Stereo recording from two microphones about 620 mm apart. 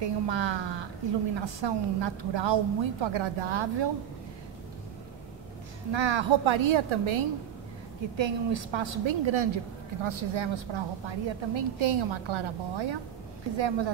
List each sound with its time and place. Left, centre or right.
0.0 s a woman's voice: right
5.9 s a woman's voice: right